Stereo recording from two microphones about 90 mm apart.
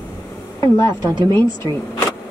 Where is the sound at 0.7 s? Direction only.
55° right (ahead or behind).